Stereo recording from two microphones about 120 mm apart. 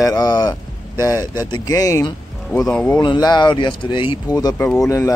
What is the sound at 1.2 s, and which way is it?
Speech, 20° right (ahead or behind).